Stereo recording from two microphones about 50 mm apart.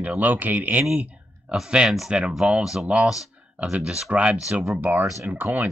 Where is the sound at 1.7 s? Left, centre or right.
Centre.